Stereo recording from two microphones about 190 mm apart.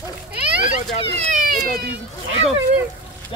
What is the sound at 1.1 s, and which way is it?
Speech, 35° right (ahead or behind).